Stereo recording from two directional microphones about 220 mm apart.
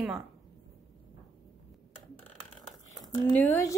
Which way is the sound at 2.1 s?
5° left (ahead or behind).